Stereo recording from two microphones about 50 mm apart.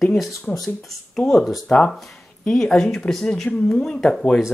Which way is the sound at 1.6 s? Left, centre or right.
Centre.